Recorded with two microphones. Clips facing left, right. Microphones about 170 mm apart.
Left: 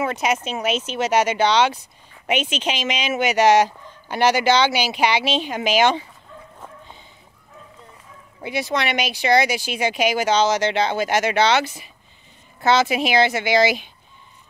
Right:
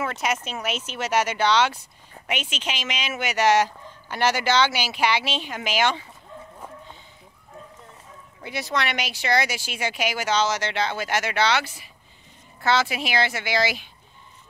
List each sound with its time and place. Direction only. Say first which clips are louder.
0.0 s speech: left 5 dB; 20° left (ahead or behind)
8.4 s speech: left 4 dB; 15° left (ahead or behind)